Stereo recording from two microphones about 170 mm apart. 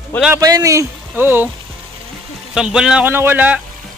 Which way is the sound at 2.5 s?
5° right (ahead or behind).